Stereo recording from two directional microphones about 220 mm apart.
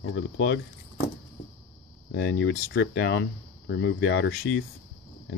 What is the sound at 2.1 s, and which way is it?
Speech, 50° left (ahead or behind).